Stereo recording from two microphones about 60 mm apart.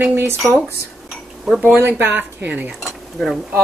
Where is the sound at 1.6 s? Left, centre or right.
Right.